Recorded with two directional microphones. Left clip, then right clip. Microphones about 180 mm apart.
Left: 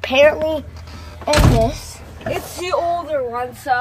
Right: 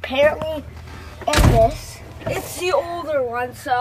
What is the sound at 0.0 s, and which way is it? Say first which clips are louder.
Speech: left 4 dB; 25° left (ahead or behind).